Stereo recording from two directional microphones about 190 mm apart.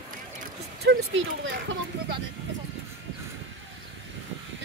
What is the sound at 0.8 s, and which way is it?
Speech, 75° right (ahead or behind).